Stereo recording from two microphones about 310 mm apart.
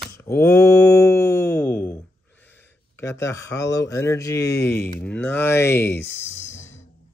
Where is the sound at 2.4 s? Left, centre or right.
Centre.